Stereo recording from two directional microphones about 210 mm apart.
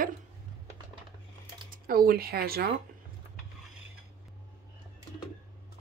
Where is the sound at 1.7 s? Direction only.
45° right (ahead or behind).